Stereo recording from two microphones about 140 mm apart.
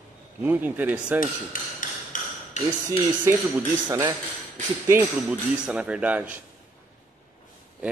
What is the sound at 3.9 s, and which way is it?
Speech, 30° right (ahead or behind).